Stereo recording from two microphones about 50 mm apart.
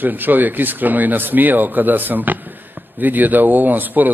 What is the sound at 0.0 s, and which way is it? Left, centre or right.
Speech, right.